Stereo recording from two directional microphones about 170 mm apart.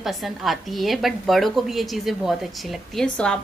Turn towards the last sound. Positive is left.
turn(degrees=5)  # may be behind; listen again after turning